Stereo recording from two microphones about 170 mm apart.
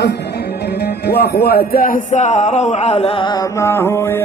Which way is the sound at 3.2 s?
15° left (ahead or behind).